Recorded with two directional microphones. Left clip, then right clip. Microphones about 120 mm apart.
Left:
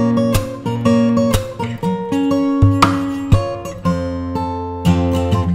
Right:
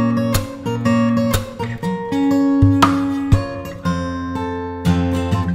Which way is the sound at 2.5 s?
50° left (ahead or behind).